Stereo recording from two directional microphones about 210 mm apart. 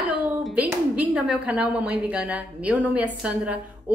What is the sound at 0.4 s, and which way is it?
A woman's voice, 5° right (ahead or behind).